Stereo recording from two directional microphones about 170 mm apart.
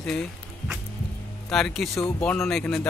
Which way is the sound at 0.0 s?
5° left (ahead or behind).